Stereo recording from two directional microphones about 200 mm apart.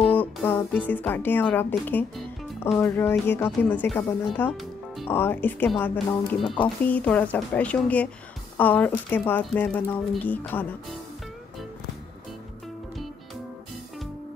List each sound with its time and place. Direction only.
0.0 s speech: 5° left (ahead or behind)
6.4 s speech: 25° left (ahead or behind)
6.8 s speech: 10° left (ahead or behind)